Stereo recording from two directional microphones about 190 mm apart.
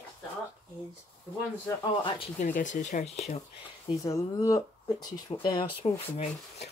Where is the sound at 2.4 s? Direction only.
40° left (ahead or behind).